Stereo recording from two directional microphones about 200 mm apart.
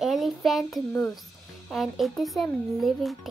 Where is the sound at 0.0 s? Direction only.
Centre (ahead or behind).